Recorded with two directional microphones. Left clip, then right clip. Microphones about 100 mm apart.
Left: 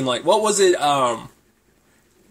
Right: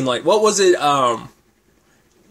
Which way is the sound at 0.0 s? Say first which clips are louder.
Right 3 dB; 40° right (ahead or behind).